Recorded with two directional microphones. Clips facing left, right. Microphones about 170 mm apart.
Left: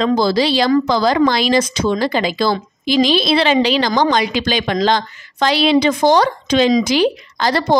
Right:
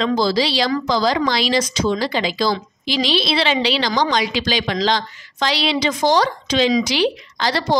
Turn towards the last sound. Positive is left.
turn(degrees=50)  # may be behind; listen again after turning